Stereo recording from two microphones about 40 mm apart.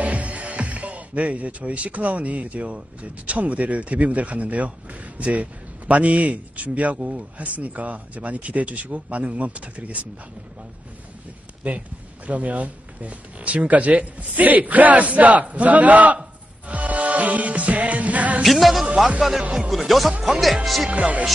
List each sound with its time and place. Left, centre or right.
0.0 s speech: right
12.3 s speech: right
16.6 s music: right
18.4 s speech: centre
20.9 s speech: right